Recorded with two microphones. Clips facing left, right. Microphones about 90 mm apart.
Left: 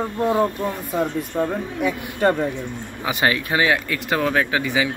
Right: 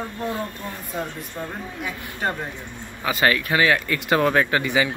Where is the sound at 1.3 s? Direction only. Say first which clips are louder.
Left 8 dB; 75° left (ahead or behind).